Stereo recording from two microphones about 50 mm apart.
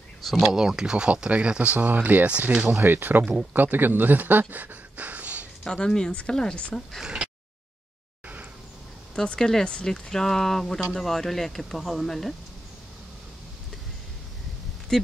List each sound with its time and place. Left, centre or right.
0.4 s speech: centre
2.1 s speech: right
2.5 s speech: centre
2.8 s speech: right
5.6 s speech: centre
9.1 s speech: centre
14.9 s speech: centre